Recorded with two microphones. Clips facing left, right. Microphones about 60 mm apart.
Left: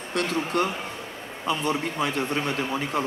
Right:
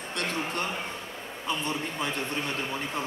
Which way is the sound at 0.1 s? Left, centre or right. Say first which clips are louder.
Left 6 dB; left.